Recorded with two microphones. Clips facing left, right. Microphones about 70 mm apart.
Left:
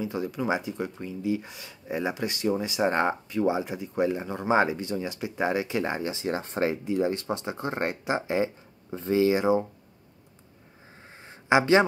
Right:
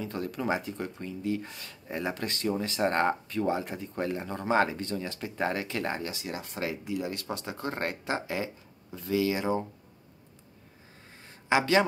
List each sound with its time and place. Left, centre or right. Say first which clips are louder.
0.0 s speech: left 3 dB; centre
6.2 s speech: left 7 dB; left
11.1 s a sound: left 4 dB; left